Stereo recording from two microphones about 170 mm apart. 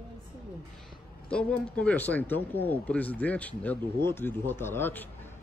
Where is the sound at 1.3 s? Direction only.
5° left (ahead or behind).